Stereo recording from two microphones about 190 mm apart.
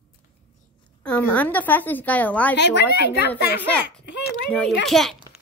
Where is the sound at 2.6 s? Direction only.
65° left (ahead or behind).